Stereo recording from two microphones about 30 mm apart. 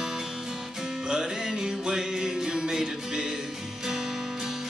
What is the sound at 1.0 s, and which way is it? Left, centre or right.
Music, right.